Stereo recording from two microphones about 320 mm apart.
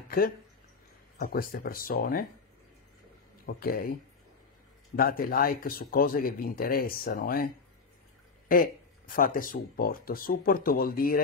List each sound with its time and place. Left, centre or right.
1.2 s speech: left
3.4 s speech: left